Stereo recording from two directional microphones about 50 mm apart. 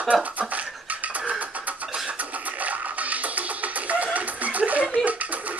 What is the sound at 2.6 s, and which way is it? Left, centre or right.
Music, right.